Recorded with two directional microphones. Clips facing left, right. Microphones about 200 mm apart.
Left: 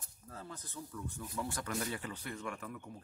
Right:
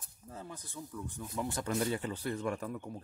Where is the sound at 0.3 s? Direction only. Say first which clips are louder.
Right 2 dB; 20° right (ahead or behind).